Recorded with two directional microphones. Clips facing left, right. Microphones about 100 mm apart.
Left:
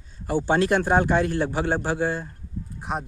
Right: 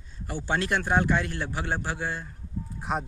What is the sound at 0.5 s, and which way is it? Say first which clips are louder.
A man's voice: left 4 dB; 25° left (ahead or behind).